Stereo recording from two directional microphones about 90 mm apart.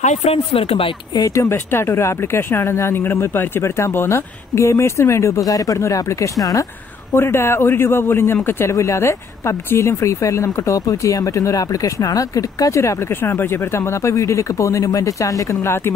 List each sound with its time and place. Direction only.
0.3 s speech: 90° left
1.1 s speech: 40° left (ahead or behind)
7.2 s a man's voice: 25° left (ahead or behind)